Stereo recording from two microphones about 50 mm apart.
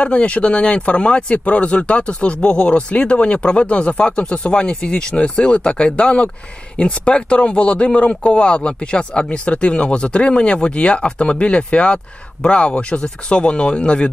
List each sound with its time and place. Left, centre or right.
0.0 s speech: left